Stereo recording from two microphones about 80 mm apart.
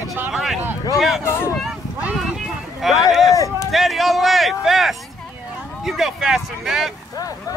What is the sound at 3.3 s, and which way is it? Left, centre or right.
Speech, left.